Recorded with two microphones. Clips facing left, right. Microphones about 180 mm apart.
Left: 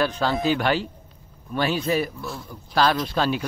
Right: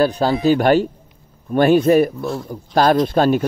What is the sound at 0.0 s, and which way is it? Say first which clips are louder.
Speech: right 7 dB; 40° right (ahead or behind).